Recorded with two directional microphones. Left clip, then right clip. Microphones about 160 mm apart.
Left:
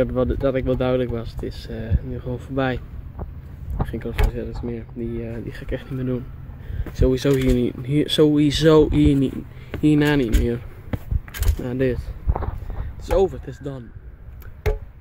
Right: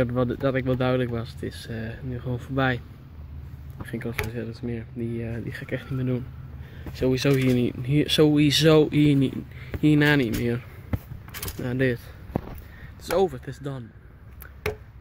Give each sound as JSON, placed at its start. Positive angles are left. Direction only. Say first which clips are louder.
{"t": 0.0, "sound": "speech", "louder": "left 4 dB", "side_deg": 0}
{"t": 3.8, "sound": "speech", "louder": "left 3 dB", "side_deg": 0}
{"t": 11.6, "sound": "speech", "louder": "left 3 dB", "side_deg": 15}
{"t": 13.0, "sound": "speech", "louder": "left 3 dB", "side_deg": 0}